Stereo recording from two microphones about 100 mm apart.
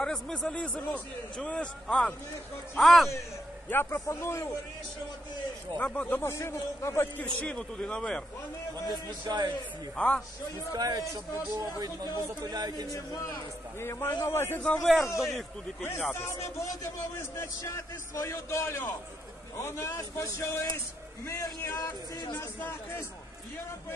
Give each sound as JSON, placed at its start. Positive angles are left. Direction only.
{"t": 0.0, "sound": "a man's voice", "side_deg": 10}
{"t": 3.7, "sound": "a man's voice", "side_deg": 25}
{"t": 5.8, "sound": "a man's voice", "side_deg": 15}
{"t": 7.3, "sound": "a man's voice", "side_deg": 10}
{"t": 9.2, "sound": "a man's voice", "side_deg": -45}
{"t": 9.9, "sound": "a man's voice", "side_deg": 10}
{"t": 10.7, "sound": "speech", "side_deg": -40}
{"t": 12.9, "sound": "a man's voice", "side_deg": 30}
{"t": 14.9, "sound": "a man's voice", "side_deg": -5}
{"t": 16.5, "sound": "a man's voice", "side_deg": 25}